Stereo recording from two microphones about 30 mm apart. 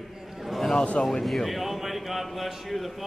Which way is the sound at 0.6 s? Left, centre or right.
Centre.